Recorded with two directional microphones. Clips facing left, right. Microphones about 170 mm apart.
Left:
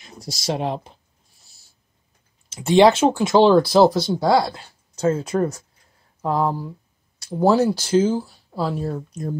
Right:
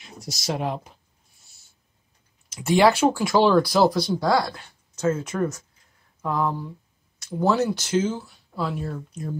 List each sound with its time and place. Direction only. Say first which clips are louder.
0.2 s speech: left 3 dB; 30° left (ahead or behind)
2.5 s speech: left 4 dB; 25° left (ahead or behind)